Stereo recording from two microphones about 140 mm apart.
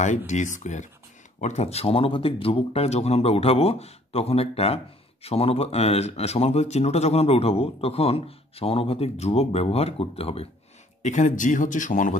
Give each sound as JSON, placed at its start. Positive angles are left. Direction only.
{"t": 0.3, "sound": "speech", "side_deg": 60}
{"t": 11.0, "sound": "speech", "side_deg": 60}